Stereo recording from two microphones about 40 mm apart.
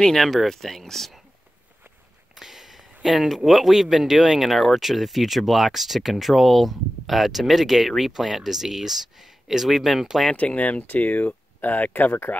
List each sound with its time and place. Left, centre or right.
0.0 s speech: centre
2.3 s speech: centre
10.3 s speech: left